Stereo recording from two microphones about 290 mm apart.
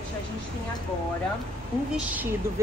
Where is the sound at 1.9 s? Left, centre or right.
Centre.